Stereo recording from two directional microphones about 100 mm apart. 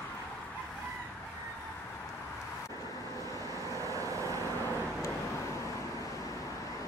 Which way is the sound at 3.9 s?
35° right (ahead or behind).